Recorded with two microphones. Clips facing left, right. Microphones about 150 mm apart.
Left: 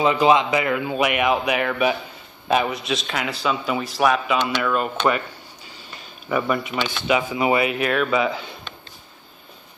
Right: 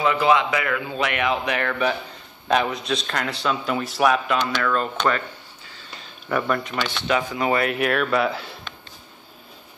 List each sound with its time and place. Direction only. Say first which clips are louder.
0.0 s speech: left 2 dB; 20° left (ahead or behind); by 4.4 s centre (ahead or behind)
4.6 s speech: left 1 dB; 10° left (ahead or behind)
6.2 s speech: left 1 dB; 5° left (ahead or behind)